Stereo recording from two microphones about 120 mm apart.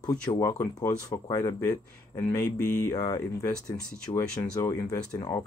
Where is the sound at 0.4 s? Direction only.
25° left (ahead or behind).